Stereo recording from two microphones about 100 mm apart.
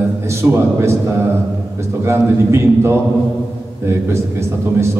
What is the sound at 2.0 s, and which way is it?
Speech, 30° right (ahead or behind).